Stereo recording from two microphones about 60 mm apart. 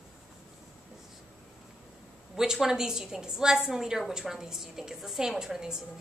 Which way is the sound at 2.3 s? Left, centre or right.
Centre.